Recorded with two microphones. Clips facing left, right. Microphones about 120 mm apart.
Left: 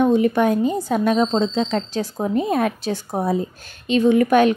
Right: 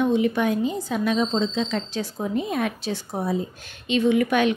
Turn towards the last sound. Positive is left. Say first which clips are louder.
# left 5 dB
turn(degrees=45)  # may be behind; listen again after turning